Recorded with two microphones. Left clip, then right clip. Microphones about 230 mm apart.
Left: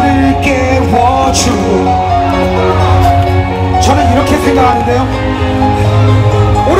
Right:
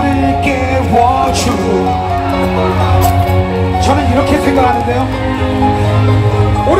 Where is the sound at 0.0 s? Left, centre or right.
Left.